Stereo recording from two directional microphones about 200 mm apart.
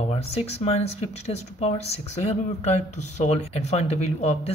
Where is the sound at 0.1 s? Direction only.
30° left (ahead or behind).